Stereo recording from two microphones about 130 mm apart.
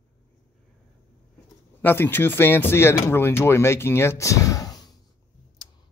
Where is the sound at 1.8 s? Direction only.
15° left (ahead or behind).